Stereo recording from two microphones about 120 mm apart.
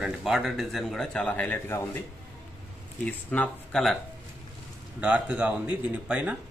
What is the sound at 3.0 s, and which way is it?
Speech, 10° left (ahead or behind).